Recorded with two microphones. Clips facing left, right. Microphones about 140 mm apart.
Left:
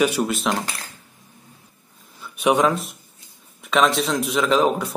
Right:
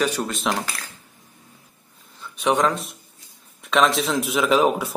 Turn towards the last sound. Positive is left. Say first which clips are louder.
# even
turn(degrees=-5)  # may be behind; listen again after turning